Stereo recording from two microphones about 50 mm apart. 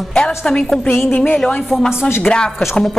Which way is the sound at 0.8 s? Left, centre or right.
Left.